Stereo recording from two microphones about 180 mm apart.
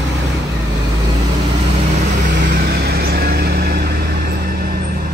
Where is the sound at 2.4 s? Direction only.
55° right (ahead or behind).